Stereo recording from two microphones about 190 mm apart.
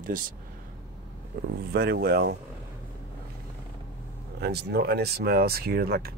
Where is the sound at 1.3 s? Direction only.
50° right (ahead or behind).